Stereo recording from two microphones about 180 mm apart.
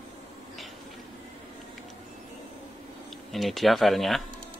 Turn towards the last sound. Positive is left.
turn(degrees=0)  # may be behind; listen again after turning